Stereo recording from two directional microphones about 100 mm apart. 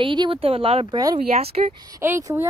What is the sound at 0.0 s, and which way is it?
Speech, 55° right (ahead or behind).